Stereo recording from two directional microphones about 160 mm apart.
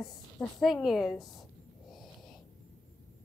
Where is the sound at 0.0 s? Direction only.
Centre (ahead or behind).